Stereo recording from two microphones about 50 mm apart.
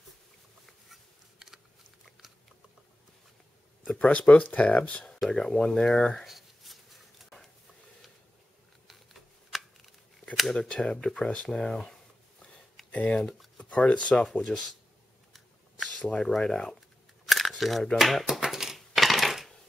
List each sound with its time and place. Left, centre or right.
1.4 s biting: centre
3.8 s speech: centre
4.1 s speech: left
5.3 s speech: centre
6.2 s a sound: centre
8.8 s computer keyboard: centre
10.5 s speech: centre
12.9 s speech: left
13.2 s a sound: centre
13.7 s speech: left
16.0 s speech: centre
17.3 s camera: centre
17.9 s typewriter: centre